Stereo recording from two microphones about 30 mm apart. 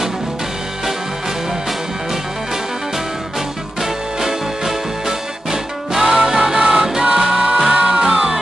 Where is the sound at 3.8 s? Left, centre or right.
Centre.